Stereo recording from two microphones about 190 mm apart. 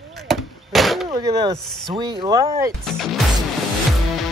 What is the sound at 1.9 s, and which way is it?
Speech, 20° right (ahead or behind).